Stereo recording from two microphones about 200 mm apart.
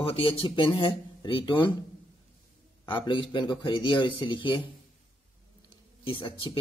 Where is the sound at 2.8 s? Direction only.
25° left (ahead or behind).